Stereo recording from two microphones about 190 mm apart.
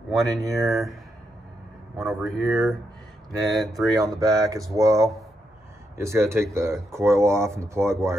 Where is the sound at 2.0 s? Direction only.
5° right (ahead or behind).